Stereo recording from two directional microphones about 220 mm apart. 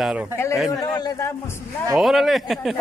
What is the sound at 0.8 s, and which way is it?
Speech, 15° left (ahead or behind).